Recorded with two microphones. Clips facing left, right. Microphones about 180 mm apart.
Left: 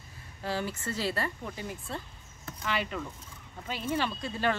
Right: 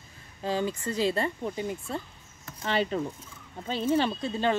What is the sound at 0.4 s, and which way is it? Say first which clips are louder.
Speech: right 5 dB; 20° right (ahead or behind).